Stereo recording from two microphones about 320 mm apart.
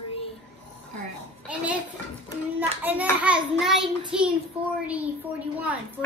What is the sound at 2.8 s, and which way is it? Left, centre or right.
A woman's voice, centre.